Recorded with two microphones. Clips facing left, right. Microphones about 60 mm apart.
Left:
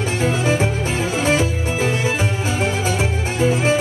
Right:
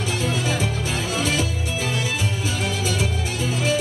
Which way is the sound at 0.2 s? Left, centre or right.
Left.